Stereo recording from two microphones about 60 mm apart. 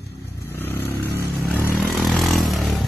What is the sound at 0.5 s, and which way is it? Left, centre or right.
Vehicle, left.